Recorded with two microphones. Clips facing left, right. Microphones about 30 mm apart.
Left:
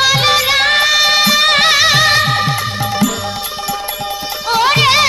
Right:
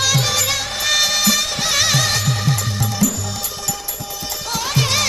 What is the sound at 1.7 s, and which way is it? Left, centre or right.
Music, left.